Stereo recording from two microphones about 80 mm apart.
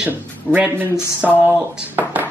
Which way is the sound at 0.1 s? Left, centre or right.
Right.